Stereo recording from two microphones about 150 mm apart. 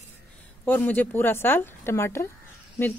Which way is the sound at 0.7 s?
10° left (ahead or behind).